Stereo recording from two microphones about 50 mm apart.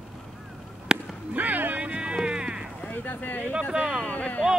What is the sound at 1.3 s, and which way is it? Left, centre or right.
Vehicle, right.